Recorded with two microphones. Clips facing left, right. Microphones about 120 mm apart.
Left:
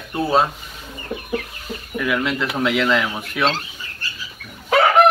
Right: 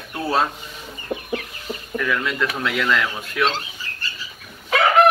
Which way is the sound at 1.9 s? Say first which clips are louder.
Left 2 dB; 15° left (ahead or behind).